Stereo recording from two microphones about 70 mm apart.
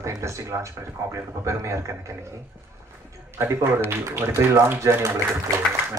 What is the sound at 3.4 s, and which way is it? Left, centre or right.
Speech, right.